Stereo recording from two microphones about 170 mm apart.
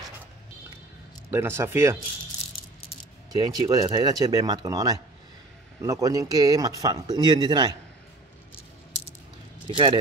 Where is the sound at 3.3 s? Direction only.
20° right (ahead or behind).